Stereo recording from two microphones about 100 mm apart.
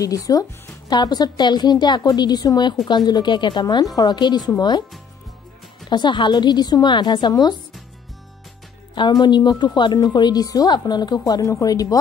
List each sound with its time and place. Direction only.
0.0 s a woman's voice: 35° left (ahead or behind)
5.9 s a woman's voice: 50° left (ahead or behind)
9.2 s a woman's voice: 45° left (ahead or behind)